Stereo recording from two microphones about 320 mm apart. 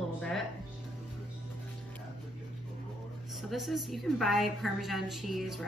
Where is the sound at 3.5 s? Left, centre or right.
Centre.